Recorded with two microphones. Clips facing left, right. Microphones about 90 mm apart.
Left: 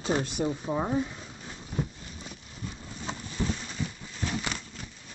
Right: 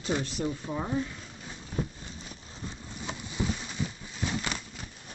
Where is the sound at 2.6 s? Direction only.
30° right (ahead or behind).